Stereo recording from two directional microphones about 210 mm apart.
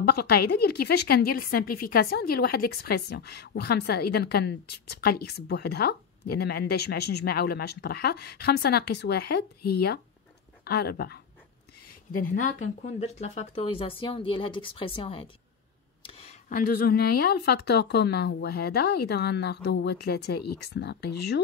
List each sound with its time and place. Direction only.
0.0 s a woman's voice: 50° left (ahead or behind)